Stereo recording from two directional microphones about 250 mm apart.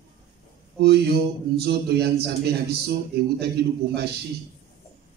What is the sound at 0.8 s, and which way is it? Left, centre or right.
A man's voice, right.